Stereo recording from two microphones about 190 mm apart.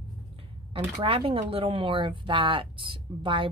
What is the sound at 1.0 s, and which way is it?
Speech, 30° right (ahead or behind).